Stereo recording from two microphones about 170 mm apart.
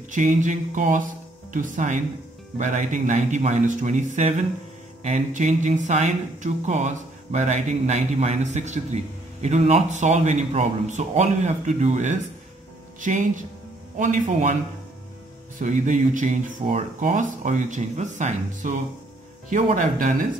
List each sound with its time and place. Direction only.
0.1 s a man's voice: 45° right (ahead or behind)
15.6 s speech: 45° right (ahead or behind)